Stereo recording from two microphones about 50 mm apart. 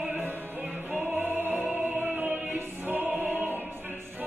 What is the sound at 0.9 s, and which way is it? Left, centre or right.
Opera, right.